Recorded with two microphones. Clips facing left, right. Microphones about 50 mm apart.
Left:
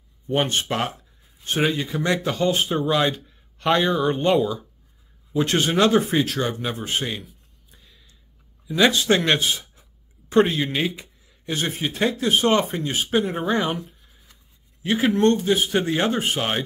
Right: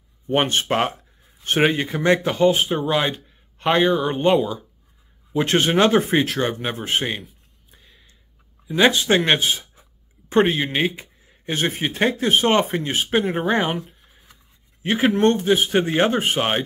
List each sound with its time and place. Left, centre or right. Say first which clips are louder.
0.3 s a man's voice: right 3 dB; right; by 4.3 s centre
5.3 s speech: right 2 dB; right
7.7 s a sound: right 2 dB; right
8.6 s speech: right 1 dB; right
14.8 s a man's voice: right 1 dB; right